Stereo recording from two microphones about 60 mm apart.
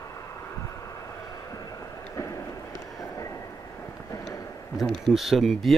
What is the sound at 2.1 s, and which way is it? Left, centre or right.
Run, left.